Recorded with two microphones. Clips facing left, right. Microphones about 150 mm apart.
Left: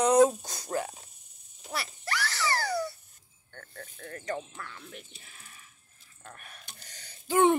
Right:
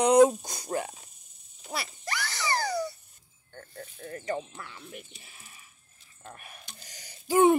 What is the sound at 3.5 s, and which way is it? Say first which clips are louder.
A woman's voice: right 2 dB; 10° right (ahead or behind).